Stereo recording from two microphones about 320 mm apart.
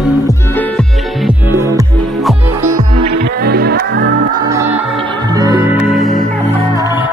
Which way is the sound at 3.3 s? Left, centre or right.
Right.